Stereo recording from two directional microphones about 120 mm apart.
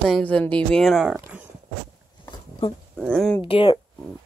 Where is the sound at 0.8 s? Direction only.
Centre (ahead or behind).